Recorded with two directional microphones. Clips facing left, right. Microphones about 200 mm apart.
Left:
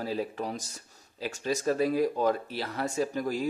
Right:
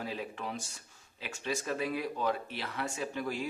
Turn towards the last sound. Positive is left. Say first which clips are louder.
# left 6 dB
turn(degrees=40)  # may be behind; listen again after turning